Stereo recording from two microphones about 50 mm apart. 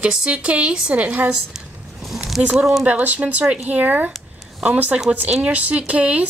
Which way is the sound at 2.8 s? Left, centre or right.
Right.